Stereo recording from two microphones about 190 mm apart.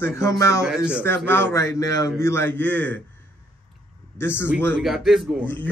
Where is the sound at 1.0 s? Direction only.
10° left (ahead or behind).